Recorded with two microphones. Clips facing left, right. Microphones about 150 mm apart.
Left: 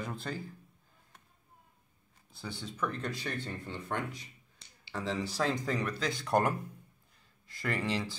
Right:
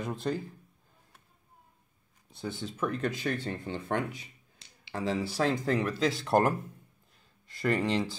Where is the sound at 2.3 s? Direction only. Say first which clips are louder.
Right 5 dB; centre (ahead or behind).